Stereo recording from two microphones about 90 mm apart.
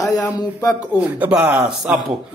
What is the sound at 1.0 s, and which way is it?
Speech, 15° right (ahead or behind).